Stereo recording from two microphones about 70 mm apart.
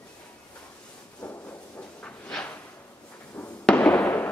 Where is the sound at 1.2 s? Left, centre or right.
Left.